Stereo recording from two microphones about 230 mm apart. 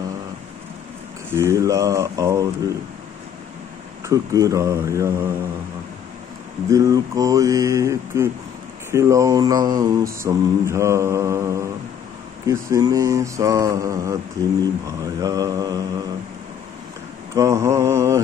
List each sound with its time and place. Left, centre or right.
1.3 s mantra: centre
4.0 s mantra: centre
6.7 s mantra: centre
17.3 s mantra: centre